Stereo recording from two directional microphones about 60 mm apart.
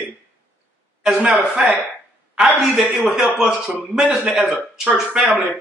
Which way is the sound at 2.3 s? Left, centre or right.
Centre.